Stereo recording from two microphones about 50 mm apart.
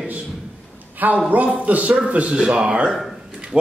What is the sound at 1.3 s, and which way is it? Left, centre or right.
A man's voice, right.